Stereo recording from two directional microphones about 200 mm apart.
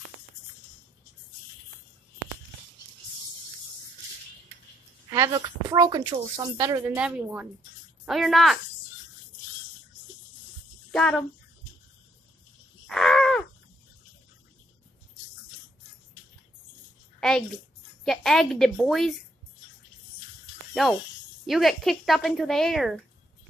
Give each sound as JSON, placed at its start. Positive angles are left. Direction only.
{"t": 5.1, "sound": "speech", "side_deg": -15}
{"t": 10.9, "sound": "speech", "side_deg": 5}
{"t": 12.8, "sound": "a sound", "side_deg": 5}
{"t": 18.0, "sound": "speech", "side_deg": 0}
{"t": 20.7, "sound": "speech", "side_deg": 0}